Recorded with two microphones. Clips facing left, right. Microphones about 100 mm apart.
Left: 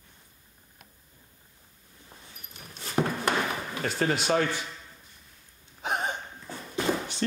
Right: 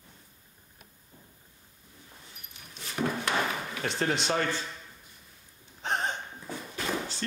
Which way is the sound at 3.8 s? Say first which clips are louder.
Left 3 dB; 5° left (ahead or behind).